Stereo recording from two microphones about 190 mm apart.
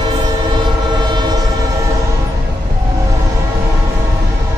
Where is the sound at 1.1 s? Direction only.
20° right (ahead or behind).